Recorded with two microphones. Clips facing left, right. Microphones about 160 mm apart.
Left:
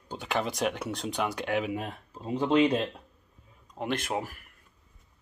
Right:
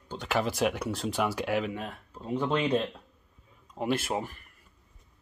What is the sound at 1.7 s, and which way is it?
Speech, 15° left (ahead or behind).